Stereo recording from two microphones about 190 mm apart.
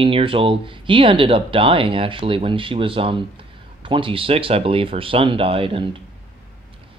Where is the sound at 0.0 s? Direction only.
30° right (ahead or behind).